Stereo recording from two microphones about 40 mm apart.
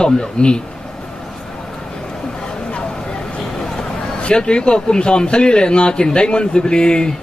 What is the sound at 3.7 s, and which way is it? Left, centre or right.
A man's voice, left.